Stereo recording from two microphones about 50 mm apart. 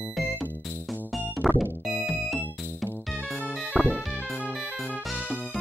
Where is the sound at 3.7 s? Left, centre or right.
Right.